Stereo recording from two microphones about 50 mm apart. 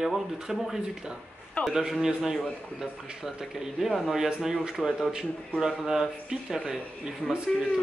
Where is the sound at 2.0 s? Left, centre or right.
Centre.